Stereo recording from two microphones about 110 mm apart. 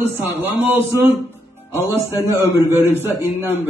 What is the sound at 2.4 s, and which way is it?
A man's voice, 20° right (ahead or behind).